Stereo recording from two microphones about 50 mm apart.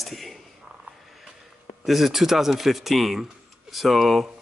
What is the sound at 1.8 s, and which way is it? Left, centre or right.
Speech, centre.